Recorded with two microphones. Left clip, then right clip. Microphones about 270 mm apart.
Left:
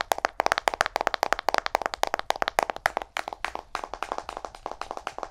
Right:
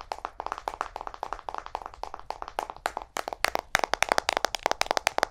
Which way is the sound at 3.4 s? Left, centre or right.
Right.